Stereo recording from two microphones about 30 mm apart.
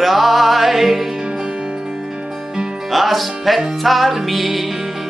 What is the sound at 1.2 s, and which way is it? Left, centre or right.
Music, right.